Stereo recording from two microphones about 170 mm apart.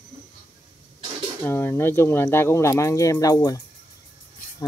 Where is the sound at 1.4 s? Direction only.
15° left (ahead or behind).